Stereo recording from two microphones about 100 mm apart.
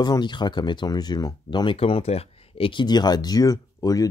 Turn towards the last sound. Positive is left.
turn(degrees=35)  # may be behind; listen again after turning